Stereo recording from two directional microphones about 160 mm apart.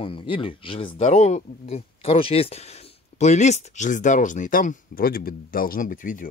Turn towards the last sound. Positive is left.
turn(degrees=55)  # may be behind; listen again after turning